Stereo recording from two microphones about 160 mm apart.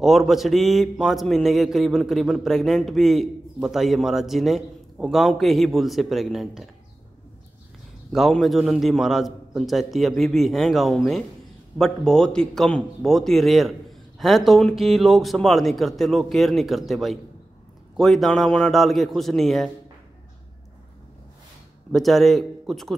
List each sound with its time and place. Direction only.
0.0 s a man's voice: centre (ahead or behind)
8.1 s a man's voice: centre (ahead or behind)
21.9 s a man's voice: centre (ahead or behind)